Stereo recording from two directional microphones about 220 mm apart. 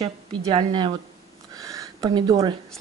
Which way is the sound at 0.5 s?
20° right (ahead or behind).